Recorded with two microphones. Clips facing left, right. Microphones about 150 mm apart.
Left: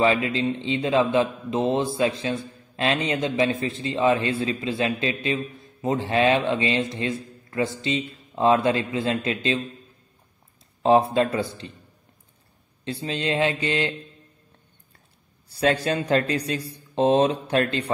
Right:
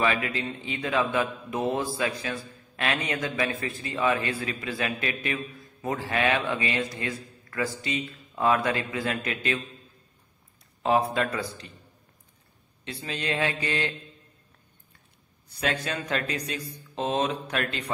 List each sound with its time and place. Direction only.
0.0 s a man's voice: 25° left (ahead or behind)
10.8 s a man's voice: 30° left (ahead or behind)
12.8 s a man's voice: 30° left (ahead or behind)
15.4 s speech: 30° left (ahead or behind)